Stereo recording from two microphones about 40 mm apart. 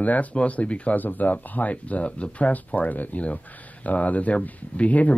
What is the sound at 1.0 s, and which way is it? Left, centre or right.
Speech, left.